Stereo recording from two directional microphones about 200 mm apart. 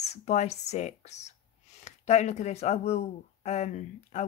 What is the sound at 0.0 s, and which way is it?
Speech, 35° left (ahead or behind).